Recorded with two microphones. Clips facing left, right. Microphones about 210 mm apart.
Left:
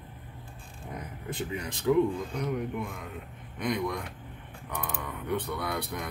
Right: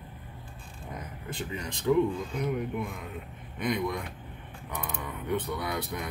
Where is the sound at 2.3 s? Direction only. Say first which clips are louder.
Right 1 dB; 5° right (ahead or behind).